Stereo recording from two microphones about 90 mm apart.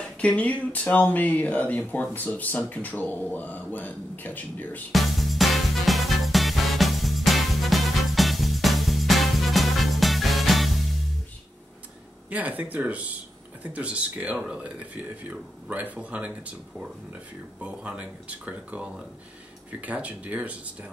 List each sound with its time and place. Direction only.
0.2 s speech: 15° left (ahead or behind)
4.9 s music: centre (ahead or behind)
12.3 s speech: 15° right (ahead or behind)